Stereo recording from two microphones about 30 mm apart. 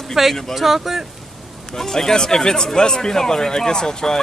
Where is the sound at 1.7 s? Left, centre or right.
Centre.